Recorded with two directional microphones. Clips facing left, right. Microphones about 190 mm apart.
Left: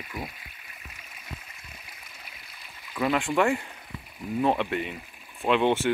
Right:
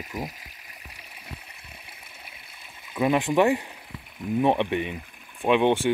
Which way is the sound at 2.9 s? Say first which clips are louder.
Right 3 dB; 20° right (ahead or behind).